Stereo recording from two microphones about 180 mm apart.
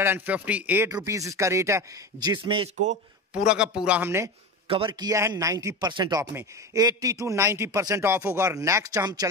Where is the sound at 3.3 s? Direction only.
5° right (ahead or behind).